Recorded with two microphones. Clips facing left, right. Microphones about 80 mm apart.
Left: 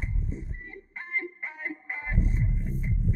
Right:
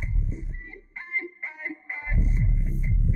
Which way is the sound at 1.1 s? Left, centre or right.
Left.